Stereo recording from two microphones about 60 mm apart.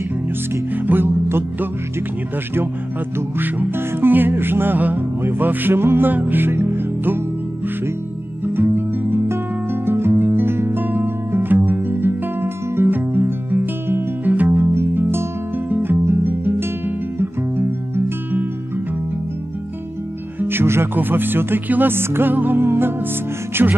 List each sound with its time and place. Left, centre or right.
0.7 s music: right
3.2 s music: right
8.5 s music: right
20.3 s speech: right
23.5 s music: right